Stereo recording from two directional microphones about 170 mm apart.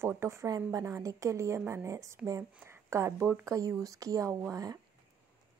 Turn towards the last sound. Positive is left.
turn(degrees=-20)  # may be behind; listen again after turning